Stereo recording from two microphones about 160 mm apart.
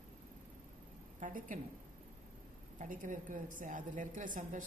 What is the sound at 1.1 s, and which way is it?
Speech, 55° right (ahead or behind).